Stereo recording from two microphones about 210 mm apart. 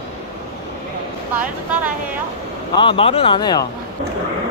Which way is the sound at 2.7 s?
25° left (ahead or behind).